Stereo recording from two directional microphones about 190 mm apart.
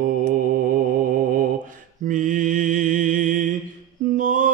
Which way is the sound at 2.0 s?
45° right (ahead or behind).